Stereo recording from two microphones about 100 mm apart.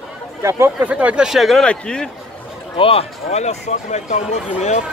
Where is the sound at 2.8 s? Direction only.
75° left (ahead or behind); by 3.6 s 90° left.